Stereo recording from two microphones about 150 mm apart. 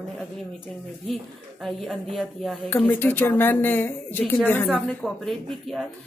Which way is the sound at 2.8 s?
15° left (ahead or behind).